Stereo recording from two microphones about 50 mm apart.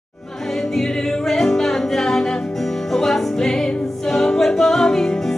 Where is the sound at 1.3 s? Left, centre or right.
Centre.